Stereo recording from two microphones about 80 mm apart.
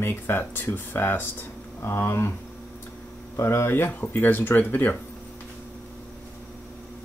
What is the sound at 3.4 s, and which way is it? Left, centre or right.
Speech, left.